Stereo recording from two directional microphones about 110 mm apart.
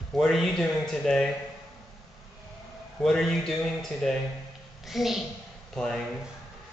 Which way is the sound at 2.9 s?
5° left (ahead or behind).